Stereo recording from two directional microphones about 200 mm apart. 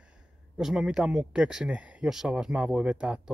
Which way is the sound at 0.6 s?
Centre (ahead or behind).